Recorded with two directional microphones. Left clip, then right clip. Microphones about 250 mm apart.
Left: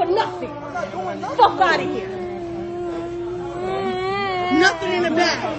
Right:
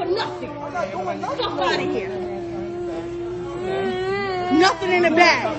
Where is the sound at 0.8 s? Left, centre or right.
Centre.